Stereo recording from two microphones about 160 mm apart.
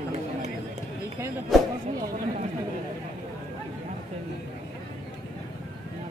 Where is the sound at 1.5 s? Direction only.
Centre (ahead or behind).